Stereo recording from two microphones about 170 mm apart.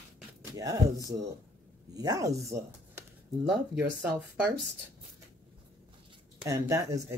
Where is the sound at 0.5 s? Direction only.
20° right (ahead or behind).